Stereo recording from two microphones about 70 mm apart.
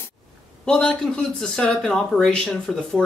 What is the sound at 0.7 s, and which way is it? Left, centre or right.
Speech, centre.